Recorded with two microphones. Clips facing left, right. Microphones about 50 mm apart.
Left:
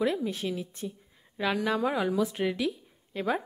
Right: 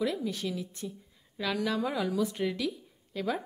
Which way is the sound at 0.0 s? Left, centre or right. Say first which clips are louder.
Left 3 dB; left.